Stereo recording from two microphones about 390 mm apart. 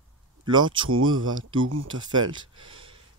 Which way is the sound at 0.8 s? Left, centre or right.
Right.